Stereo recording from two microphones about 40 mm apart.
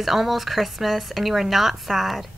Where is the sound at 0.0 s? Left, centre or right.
Centre.